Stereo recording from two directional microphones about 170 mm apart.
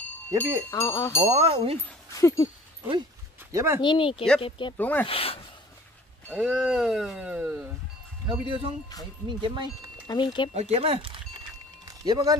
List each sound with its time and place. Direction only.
0.3 s speech: 15° right (ahead or behind)
0.7 s speech: 15° left (ahead or behind)
1.3 s speech: 35° right (ahead or behind)
2.1 s speech: 20° left (ahead or behind)
3.5 s speech: 15° right (ahead or behind)
3.8 s speech: 30° left (ahead or behind)
4.7 s speech: 10° left (ahead or behind)
5.0 s speech: 35° left (ahead or behind)
6.2 s speech: 5° right (ahead or behind)
8.3 s speech: 30° right (ahead or behind)
10.0 s speech: 25° left (ahead or behind)
10.5 s speech: 40° right (ahead or behind)
11.8 s a sound: 20° right (ahead or behind)